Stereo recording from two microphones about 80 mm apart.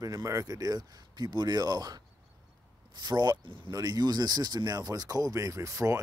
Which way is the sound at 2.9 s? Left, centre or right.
Right.